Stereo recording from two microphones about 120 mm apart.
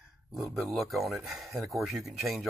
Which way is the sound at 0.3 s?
Centre (ahead or behind).